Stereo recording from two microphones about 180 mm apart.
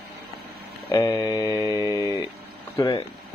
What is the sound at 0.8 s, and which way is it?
Speech, 20° left (ahead or behind).